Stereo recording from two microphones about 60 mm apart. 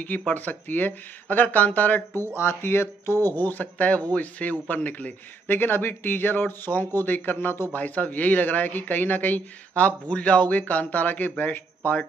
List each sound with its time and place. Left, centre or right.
0.3 s speech: left
2.3 s a man's voice: left
7.3 s speech: left
7.7 s speech: left